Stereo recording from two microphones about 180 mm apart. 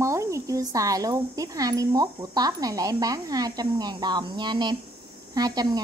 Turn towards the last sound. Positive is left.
turn(degrees=-20)  # may be behind; listen again after turning